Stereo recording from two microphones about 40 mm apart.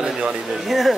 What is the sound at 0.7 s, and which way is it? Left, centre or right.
Speech, centre.